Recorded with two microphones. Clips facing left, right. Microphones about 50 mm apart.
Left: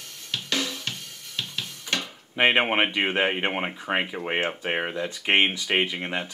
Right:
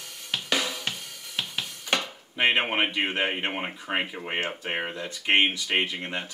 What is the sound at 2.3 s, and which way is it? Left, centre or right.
Speech, left.